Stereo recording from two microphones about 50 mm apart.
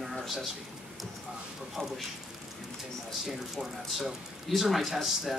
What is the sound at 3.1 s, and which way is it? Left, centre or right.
Speech, centre.